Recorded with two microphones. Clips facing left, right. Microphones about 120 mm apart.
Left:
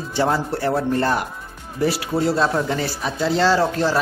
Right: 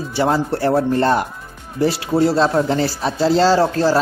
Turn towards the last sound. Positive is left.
turn(degrees=-30)  # may be behind; listen again after turning